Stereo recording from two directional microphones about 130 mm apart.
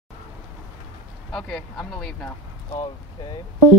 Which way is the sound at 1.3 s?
5° left (ahead or behind).